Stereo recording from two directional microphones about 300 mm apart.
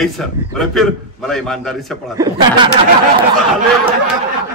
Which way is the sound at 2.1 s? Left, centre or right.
Centre.